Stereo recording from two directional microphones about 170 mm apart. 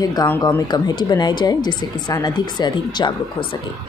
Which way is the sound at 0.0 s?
20° left (ahead or behind).